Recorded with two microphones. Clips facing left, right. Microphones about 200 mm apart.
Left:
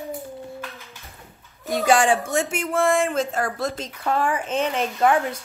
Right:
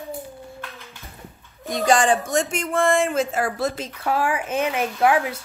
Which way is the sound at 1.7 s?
5° left (ahead or behind).